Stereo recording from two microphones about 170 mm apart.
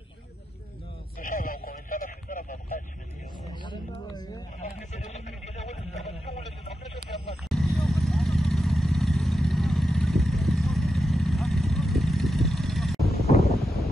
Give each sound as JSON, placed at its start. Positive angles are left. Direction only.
{"t": 1.2, "sound": "vehicle", "side_deg": 55}
{"t": 3.6, "sound": "a sound", "side_deg": 25}
{"t": 4.6, "sound": "vehicle", "side_deg": 45}
{"t": 6.0, "sound": "a sound", "side_deg": 40}
{"t": 7.1, "sound": "vehicle", "side_deg": 45}
{"t": 7.4, "sound": "vehicle", "side_deg": 0}
{"t": 13.6, "sound": "wind noise", "side_deg": 0}